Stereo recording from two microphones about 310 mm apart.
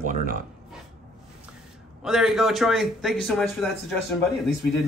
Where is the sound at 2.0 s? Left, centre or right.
Centre.